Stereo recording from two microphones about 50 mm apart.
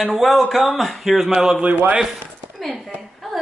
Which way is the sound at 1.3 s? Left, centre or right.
Centre.